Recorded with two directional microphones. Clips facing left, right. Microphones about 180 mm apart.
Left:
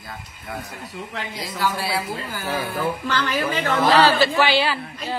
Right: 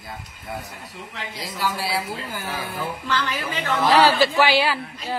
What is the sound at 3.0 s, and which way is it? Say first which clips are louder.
Speech: left 3 dB; 50° left (ahead or behind).